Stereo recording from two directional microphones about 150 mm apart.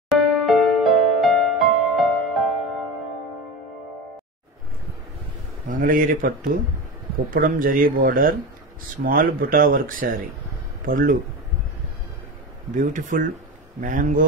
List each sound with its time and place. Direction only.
0.1 s music: centre (ahead or behind)
5.7 s speech: 65° right (ahead or behind)
12.7 s speech: 60° right (ahead or behind)